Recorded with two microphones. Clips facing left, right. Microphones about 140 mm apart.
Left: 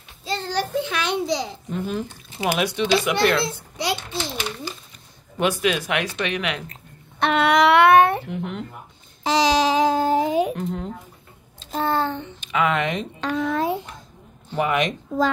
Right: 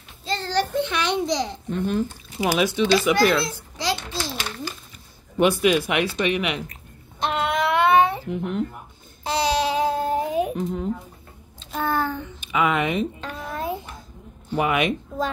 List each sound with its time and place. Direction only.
0.2 s a child's voice: 10° left (ahead or behind)
3.4 s a child's voice: 20° left (ahead or behind)
5.6 s speech: 10° right (ahead or behind)
7.2 s a sound: 70° left (ahead or behind)
8.3 s speech: centre (ahead or behind)
9.2 s babbling: 90° left
10.5 s speech: 5° right (ahead or behind)
11.6 s a sound: 30° left (ahead or behind)
12.4 s speech: 5° right (ahead or behind)
13.2 s a sound: 90° left
14.5 s speech: 5° right (ahead or behind)